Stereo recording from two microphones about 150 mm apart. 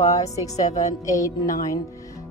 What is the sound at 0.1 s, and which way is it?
Speech, 20° left (ahead or behind).